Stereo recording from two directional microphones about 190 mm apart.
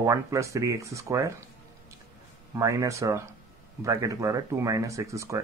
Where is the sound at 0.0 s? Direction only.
15° right (ahead or behind).